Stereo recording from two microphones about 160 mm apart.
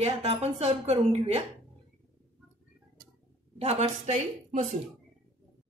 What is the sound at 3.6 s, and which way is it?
A woman's voice, 45° right (ahead or behind).